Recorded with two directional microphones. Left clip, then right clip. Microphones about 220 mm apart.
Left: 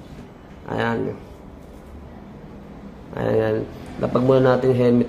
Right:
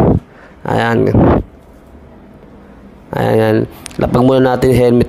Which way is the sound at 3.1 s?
50° right (ahead or behind).